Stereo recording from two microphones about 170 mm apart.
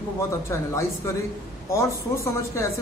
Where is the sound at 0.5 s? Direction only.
15° left (ahead or behind).